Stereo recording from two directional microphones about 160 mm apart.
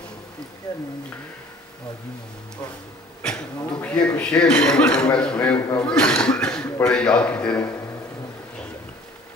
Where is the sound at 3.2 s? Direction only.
5° left (ahead or behind).